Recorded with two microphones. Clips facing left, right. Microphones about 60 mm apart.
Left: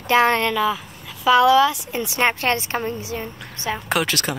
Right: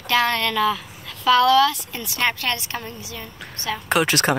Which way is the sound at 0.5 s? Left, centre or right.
Centre.